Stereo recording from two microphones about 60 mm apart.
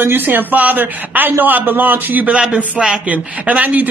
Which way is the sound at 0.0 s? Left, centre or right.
Right.